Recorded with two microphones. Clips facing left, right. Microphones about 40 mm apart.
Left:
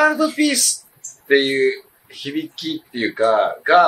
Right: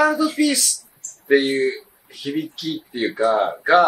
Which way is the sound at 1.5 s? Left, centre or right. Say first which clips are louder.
Left 3 dB; left.